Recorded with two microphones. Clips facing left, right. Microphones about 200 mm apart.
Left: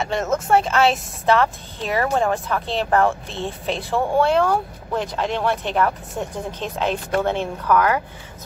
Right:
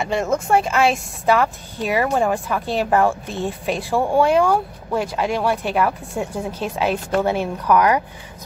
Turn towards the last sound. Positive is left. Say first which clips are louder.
# right 2 dB
turn(degrees=-15)  # may be behind; listen again after turning